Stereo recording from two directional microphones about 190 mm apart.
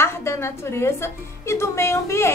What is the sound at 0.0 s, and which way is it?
A woman's voice, 15° left (ahead or behind).